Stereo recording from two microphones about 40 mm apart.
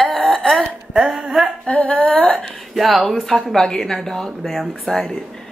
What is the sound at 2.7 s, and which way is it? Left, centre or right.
Speech, centre.